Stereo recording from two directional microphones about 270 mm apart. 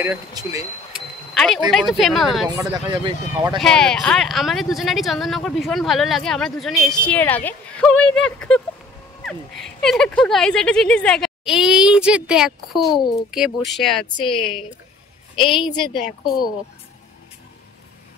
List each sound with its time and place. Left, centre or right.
0.0 s speech: centre
1.3 s a sound: centre
1.7 s speech: centre
2.5 s speech: centre
3.5 s speech: centre
9.8 s speech: centre
14.1 s a woman's voice: centre
15.9 s a woman's voice: left